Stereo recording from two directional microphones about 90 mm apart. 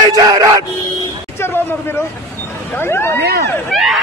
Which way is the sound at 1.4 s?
25° left (ahead or behind).